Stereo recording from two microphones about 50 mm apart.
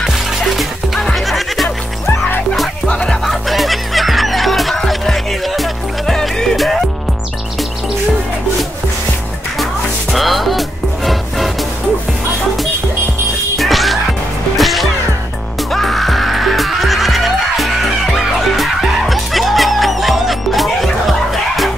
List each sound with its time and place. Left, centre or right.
0.0 s music: centre
2.9 s music: centre
3.3 s music: centre
10.1 s music: centre
13.6 s music: centre